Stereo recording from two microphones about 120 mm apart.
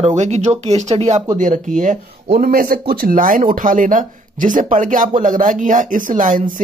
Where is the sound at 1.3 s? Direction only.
90° right.